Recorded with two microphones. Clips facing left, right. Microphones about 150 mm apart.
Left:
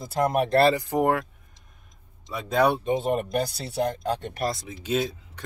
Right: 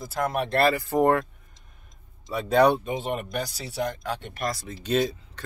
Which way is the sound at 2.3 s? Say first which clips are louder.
Right 3 dB; centre (ahead or behind).